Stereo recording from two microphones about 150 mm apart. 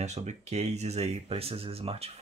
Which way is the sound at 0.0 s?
50° right (ahead or behind).